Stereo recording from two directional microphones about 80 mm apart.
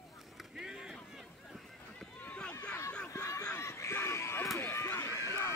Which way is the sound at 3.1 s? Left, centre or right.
Left.